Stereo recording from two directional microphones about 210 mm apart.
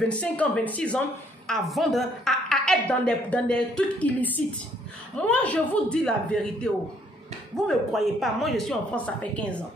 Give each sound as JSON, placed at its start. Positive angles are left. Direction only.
{"t": 0.1, "sound": "a woman's voice", "side_deg": 5}